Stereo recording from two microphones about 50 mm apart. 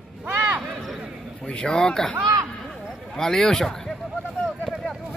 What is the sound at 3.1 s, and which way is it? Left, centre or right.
Speech, centre.